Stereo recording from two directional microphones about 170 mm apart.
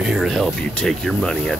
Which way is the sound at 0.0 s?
Centre (ahead or behind).